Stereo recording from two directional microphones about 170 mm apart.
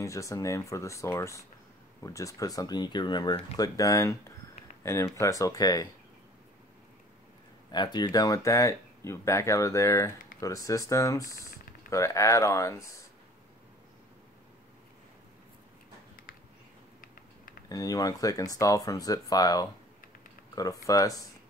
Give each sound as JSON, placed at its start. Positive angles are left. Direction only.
{"t": 0.0, "sound": "speech", "side_deg": 20}
{"t": 7.7, "sound": "speech", "side_deg": 25}
{"t": 17.6, "sound": "speech", "side_deg": 20}